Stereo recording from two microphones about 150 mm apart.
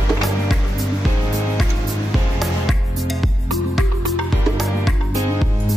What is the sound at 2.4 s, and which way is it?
Music, centre (ahead or behind).